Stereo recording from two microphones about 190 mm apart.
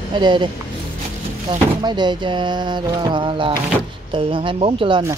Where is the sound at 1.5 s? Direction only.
25° right (ahead or behind).